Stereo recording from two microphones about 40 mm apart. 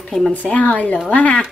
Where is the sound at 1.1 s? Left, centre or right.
Left.